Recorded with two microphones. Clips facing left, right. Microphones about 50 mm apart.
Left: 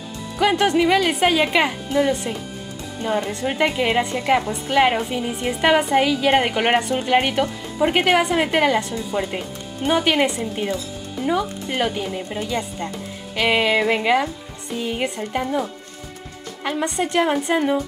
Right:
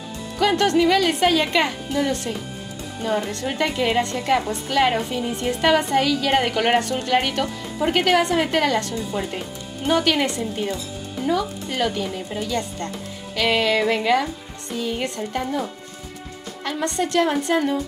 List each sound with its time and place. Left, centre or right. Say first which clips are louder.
0.4 s speech: left 1 dB; centre
16.6 s speech: left 1 dB; centre